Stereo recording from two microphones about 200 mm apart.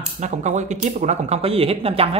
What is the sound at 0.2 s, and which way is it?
Speech, 35° right (ahead or behind).